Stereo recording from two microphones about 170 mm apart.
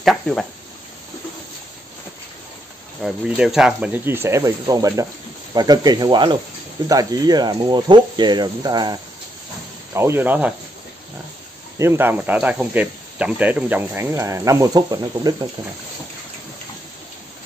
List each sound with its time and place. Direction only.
0.0 s speech: 5° left (ahead or behind)
3.0 s speech: 5° right (ahead or behind); by 8.9 s 25° right (ahead or behind)
9.9 s speech: 15° right (ahead or behind)
11.8 s speech: 15° right (ahead or behind)